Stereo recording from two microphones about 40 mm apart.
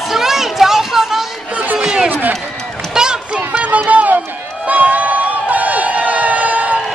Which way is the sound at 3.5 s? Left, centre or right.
Right.